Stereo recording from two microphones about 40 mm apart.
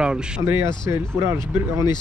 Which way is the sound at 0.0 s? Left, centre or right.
Right.